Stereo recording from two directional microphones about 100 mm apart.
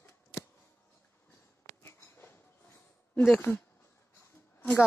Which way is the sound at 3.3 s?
25° left (ahead or behind).